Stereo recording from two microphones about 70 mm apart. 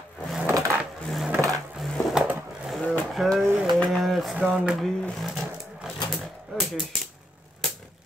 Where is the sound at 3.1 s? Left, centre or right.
Centre.